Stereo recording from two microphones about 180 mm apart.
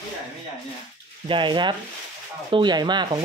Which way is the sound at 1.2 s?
25° right (ahead or behind).